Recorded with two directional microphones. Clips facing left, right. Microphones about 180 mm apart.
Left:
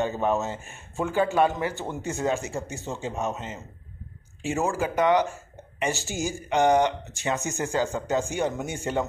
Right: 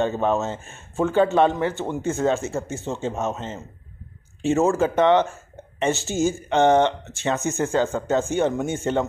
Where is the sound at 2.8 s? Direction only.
20° right (ahead or behind).